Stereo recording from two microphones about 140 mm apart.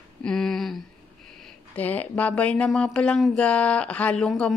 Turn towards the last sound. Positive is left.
turn(degrees=5)  # may be behind; listen again after turning